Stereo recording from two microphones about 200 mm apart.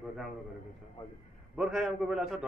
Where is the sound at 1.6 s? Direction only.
Centre (ahead or behind).